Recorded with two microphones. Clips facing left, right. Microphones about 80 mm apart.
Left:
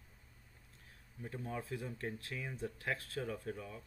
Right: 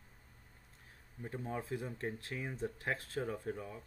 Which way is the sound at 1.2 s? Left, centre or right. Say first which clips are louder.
Right 2 dB; right.